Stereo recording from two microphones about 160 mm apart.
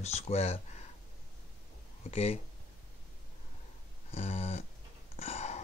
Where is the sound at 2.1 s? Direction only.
40° left (ahead or behind).